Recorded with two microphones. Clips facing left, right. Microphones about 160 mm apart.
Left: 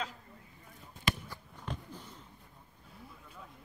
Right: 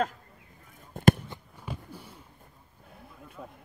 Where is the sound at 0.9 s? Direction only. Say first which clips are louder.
Right 14 dB; 55° right (ahead or behind).